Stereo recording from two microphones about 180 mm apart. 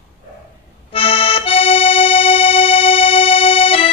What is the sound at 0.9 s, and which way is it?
Accordion, 30° left (ahead or behind).